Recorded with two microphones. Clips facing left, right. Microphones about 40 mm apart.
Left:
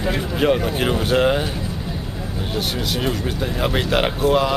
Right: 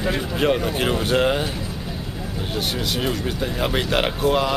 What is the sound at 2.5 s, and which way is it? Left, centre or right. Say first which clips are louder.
Speech: left 1 dB; centre.